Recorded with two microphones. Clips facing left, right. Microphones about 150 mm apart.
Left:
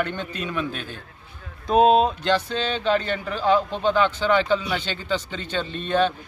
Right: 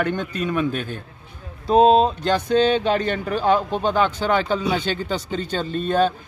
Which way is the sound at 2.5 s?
45° right (ahead or behind).